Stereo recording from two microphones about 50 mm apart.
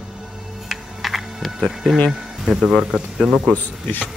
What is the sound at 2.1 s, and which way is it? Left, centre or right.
Speech, centre.